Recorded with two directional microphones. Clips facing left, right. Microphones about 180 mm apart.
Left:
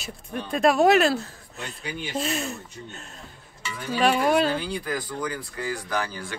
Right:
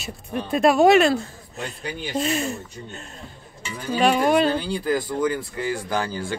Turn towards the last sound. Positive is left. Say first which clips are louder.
# right 4 dB
turn(degrees=-30)  # may be behind; listen again after turning